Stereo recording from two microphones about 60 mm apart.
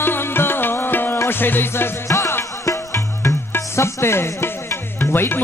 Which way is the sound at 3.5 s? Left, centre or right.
Left.